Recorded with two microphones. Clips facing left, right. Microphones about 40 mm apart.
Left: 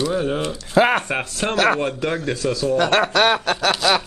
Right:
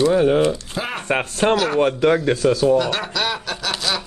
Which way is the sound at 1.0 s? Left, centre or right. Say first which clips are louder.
Right 5 dB; right.